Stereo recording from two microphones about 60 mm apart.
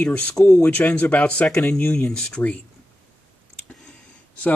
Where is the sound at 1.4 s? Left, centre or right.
Centre.